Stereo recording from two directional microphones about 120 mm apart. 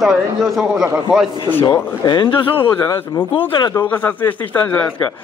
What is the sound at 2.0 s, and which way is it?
Speech, 35° left (ahead or behind).